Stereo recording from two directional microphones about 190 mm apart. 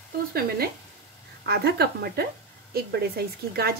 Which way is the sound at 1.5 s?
55° right (ahead or behind).